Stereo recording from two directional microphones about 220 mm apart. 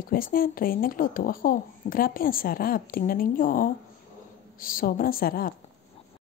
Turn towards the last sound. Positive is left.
turn(degrees=40)  # may be behind; listen again after turning